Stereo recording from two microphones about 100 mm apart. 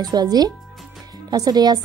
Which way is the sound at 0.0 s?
40° right (ahead or behind).